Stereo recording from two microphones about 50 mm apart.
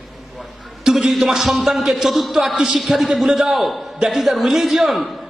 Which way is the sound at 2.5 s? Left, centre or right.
Centre.